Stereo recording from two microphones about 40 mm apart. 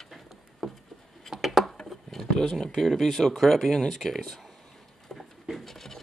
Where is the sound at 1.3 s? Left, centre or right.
Centre.